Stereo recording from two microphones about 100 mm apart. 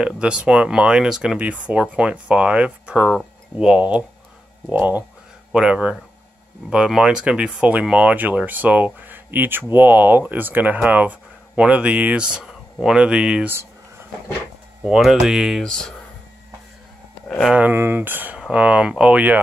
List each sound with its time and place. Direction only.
0.0 s speech: 10° right (ahead or behind)
14.9 s speech: 5° right (ahead or behind)
17.6 s speech: 20° right (ahead or behind)